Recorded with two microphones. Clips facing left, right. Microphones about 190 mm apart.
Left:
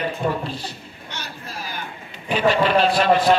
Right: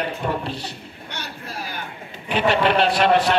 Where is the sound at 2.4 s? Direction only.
65° right (ahead or behind).